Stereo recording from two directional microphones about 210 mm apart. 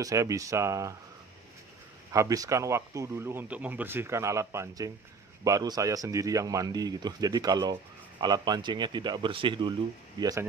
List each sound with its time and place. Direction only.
0.0 s speech: 15° right (ahead or behind)
2.1 s speech: 15° right (ahead or behind)